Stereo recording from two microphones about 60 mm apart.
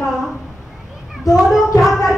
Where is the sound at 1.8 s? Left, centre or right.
Centre.